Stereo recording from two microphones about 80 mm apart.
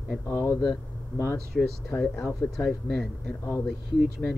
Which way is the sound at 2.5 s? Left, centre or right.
Centre.